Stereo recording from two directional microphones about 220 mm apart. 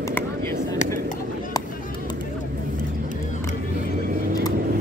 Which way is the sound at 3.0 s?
35° left (ahead or behind).